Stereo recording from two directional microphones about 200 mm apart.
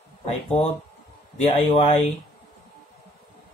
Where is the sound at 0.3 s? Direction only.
30° left (ahead or behind).